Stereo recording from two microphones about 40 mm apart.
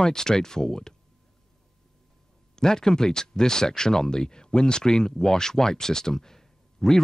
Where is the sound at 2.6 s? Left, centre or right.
Centre.